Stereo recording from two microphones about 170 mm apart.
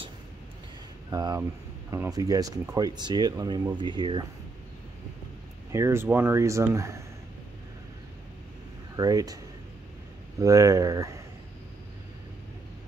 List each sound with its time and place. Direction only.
1.1 s speech: 20° right (ahead or behind)
5.7 s speech: 15° right (ahead or behind)
8.9 s speech: 20° right (ahead or behind)
10.4 s speech: 20° right (ahead or behind)